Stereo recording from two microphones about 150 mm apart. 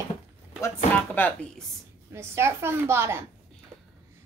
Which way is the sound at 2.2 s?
15° right (ahead or behind).